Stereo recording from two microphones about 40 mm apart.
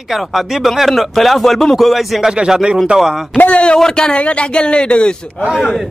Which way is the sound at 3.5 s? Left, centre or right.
Left.